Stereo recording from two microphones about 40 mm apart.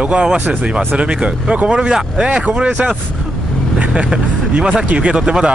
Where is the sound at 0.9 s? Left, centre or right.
Right.